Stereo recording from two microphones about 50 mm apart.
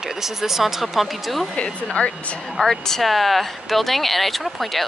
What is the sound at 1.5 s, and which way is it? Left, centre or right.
Speech, left.